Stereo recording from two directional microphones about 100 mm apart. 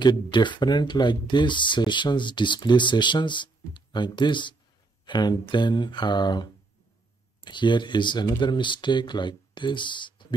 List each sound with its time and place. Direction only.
0.0 s speech: 50° left (ahead or behind)